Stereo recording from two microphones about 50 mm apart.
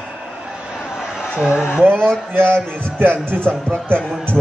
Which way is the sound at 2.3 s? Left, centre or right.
Right.